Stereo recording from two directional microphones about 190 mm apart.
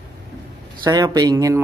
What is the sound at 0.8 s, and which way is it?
Speech, 20° right (ahead or behind).